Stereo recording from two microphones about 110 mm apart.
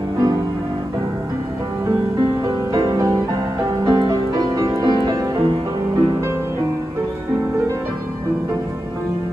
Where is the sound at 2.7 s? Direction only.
30° right (ahead or behind).